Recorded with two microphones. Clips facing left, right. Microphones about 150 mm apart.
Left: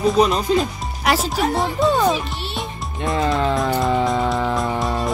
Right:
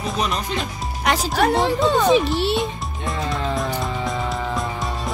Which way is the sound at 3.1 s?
Centre (ahead or behind).